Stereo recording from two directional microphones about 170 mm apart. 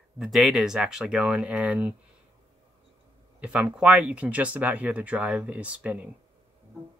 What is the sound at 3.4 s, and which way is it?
Speech, 5° right (ahead or behind).